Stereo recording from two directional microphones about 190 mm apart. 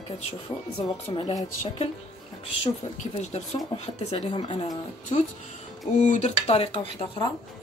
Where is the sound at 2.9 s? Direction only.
35° left (ahead or behind).